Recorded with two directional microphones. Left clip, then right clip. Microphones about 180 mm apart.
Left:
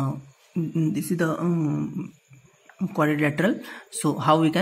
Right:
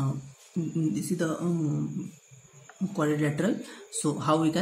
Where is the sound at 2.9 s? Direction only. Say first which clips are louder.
Left 5 dB; 40° left (ahead or behind).